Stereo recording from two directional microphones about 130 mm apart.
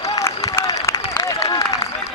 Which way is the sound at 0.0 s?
25° left (ahead or behind).